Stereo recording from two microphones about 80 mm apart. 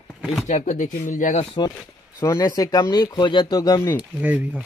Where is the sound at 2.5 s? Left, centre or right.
Left.